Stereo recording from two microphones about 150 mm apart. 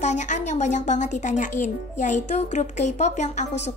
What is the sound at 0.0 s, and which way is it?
A woman's voice, 55° left (ahead or behind).